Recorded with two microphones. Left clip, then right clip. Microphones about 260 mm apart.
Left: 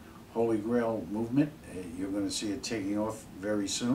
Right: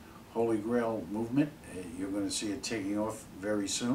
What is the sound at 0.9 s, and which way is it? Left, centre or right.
Speech, right.